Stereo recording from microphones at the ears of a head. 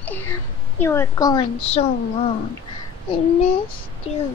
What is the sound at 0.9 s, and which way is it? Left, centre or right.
A child's voice, left.